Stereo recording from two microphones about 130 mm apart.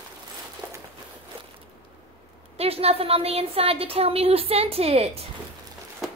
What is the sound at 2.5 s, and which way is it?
A woman's voice, 50° right (ahead or behind).